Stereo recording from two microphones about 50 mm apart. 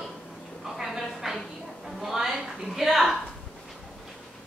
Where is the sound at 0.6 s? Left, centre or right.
Centre.